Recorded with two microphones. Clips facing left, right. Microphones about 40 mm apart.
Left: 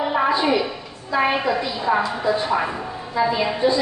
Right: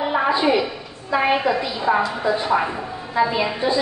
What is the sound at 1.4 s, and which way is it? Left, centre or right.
A woman's voice, centre.